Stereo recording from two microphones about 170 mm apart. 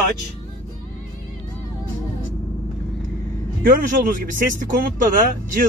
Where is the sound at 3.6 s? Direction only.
50° right (ahead or behind).